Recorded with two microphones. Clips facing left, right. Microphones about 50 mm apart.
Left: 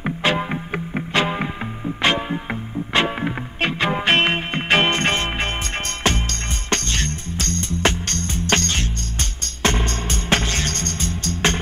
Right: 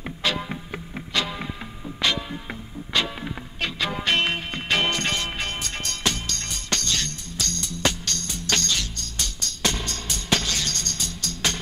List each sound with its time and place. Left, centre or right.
0.0 s music: left